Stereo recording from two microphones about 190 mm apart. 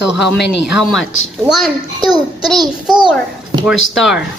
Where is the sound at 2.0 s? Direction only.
20° right (ahead or behind).